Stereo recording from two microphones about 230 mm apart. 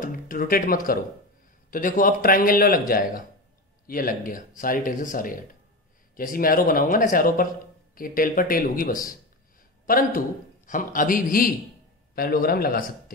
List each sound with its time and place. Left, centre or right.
0.0 s speech: left